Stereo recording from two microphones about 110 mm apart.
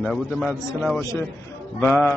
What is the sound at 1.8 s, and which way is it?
Speech, 20° left (ahead or behind).